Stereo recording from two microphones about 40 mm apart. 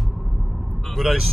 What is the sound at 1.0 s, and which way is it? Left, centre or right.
Speech, centre.